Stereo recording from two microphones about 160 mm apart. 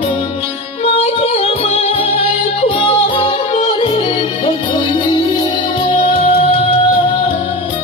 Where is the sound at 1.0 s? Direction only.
40° left (ahead or behind).